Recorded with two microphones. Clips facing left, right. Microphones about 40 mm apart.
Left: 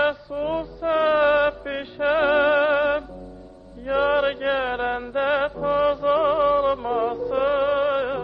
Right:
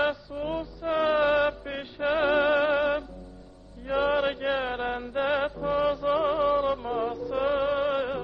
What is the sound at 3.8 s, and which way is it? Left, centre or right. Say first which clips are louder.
Mantra: left 5 dB; centre.